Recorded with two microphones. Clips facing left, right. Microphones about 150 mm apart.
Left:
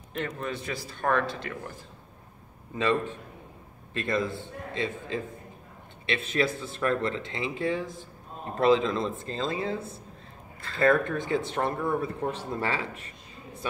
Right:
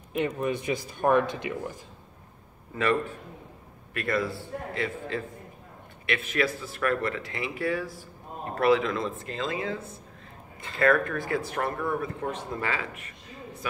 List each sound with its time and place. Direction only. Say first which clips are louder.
0.1 s speech: right 5 dB; 10° right (ahead or behind)
2.8 s a man's voice: even; 15° left (ahead or behind)
10.8 s speech: even; 25° left (ahead or behind)